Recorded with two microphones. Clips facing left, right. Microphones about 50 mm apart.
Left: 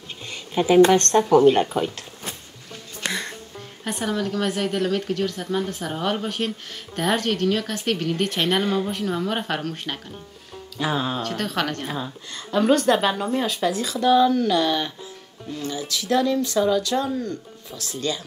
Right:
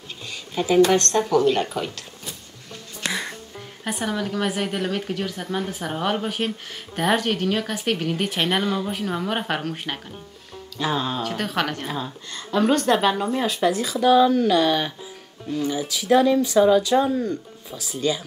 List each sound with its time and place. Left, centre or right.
0.3 s a woman's voice: left
2.7 s a woman's voice: centre
10.8 s speech: centre
11.2 s a woman's voice: centre